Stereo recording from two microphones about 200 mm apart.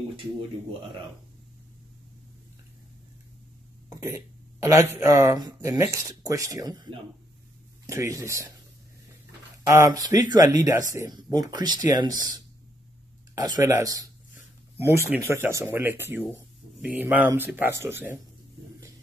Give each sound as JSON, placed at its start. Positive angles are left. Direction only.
{"t": 4.0, "sound": "speech", "side_deg": -15}
{"t": 9.7, "sound": "speech", "side_deg": -15}